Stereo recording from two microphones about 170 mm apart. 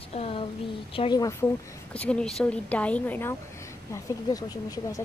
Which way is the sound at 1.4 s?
15° left (ahead or behind).